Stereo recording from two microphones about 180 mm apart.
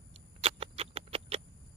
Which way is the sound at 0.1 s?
35° right (ahead or behind).